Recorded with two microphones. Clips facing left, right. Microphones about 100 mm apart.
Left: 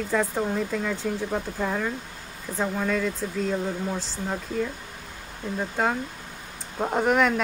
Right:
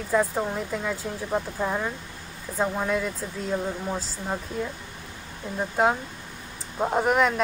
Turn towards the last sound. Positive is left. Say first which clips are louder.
# even
turn(degrees=-5)  # may be behind; listen again after turning